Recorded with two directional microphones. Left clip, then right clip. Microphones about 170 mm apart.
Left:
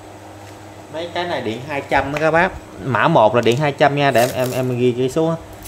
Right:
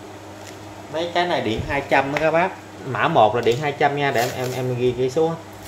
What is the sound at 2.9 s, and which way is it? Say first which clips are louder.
Speech: left 3 dB; 90° left.